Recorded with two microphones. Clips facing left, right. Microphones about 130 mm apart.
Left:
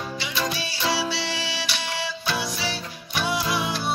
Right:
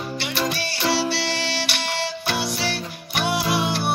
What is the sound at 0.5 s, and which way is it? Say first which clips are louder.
Music: right 3 dB; 65° right (ahead or behind).